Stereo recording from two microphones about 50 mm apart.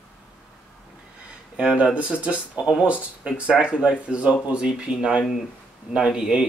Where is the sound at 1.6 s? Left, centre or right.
Centre.